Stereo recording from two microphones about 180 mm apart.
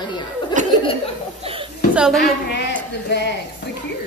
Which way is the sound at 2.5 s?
70° left (ahead or behind).